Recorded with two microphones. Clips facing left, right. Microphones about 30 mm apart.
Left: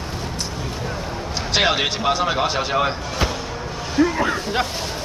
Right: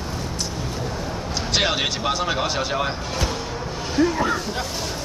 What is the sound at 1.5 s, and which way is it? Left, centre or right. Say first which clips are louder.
Speech: left 3 dB; centre.